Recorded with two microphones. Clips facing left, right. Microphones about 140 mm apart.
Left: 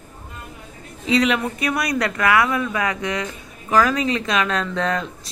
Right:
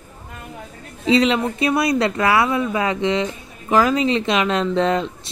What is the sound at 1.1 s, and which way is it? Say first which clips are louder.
Speech: right 3 dB; 25° right (ahead or behind).